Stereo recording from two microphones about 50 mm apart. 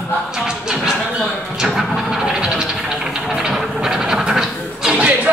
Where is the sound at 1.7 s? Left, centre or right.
Centre.